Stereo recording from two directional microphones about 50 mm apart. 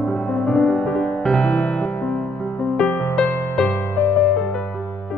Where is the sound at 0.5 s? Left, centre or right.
Centre; by 3.7 s left.